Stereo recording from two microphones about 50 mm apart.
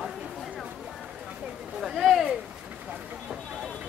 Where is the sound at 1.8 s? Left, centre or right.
Centre.